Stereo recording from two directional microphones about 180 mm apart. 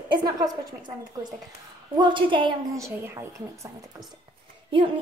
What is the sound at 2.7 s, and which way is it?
Speech, 15° right (ahead or behind).